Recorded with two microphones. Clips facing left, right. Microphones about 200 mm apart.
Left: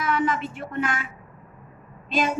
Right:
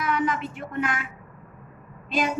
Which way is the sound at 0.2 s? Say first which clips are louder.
Left 1 dB; 25° left (ahead or behind).